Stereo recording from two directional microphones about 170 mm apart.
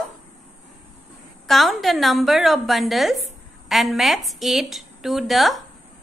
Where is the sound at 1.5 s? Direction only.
Centre (ahead or behind).